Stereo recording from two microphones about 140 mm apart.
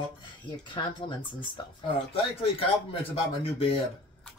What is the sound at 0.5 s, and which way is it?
Speech, 35° left (ahead or behind).